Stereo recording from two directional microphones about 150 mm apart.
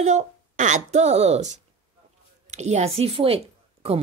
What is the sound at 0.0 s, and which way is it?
A woman's voice, 50° right (ahead or behind).